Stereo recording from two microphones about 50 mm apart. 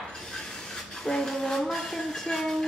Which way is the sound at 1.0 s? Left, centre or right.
Centre.